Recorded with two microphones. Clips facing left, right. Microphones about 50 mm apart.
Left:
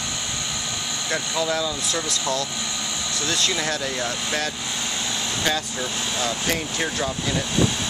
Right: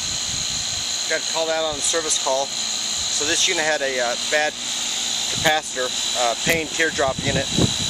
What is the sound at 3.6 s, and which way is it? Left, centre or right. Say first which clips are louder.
Speech: right 5 dB; right.